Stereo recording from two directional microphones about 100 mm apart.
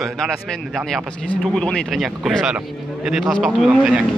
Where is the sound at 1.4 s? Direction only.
5° left (ahead or behind).